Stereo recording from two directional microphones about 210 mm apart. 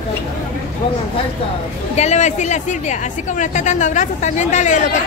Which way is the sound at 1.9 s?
35° left (ahead or behind).